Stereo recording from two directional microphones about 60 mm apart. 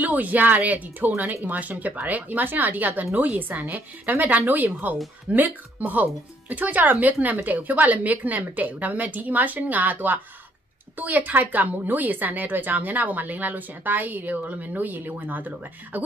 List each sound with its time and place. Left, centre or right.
0.0 s a woman's voice: right